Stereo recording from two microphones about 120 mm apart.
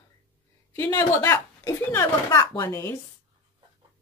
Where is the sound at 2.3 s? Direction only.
35° left (ahead or behind).